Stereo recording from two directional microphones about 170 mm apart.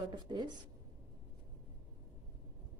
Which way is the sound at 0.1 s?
25° right (ahead or behind).